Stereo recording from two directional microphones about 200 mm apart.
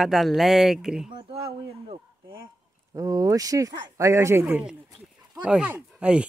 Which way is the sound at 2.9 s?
15° right (ahead or behind).